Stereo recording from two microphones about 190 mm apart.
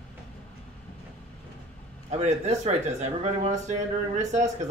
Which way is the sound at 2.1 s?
35° right (ahead or behind).